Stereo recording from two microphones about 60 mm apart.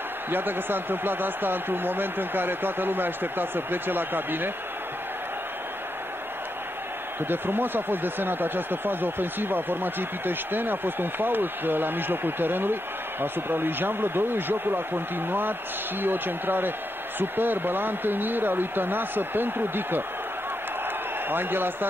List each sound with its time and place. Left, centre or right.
0.3 s speech: right
7.2 s speech: right
21.3 s speech: right